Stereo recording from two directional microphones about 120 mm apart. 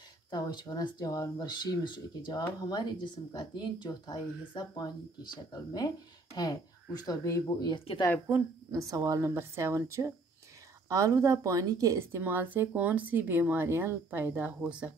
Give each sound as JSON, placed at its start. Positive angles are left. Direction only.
{"t": 0.3, "sound": "speech", "side_deg": 40}
{"t": 8.7, "sound": "a woman's voice", "side_deg": -30}
{"t": 12.2, "sound": "speech", "side_deg": -15}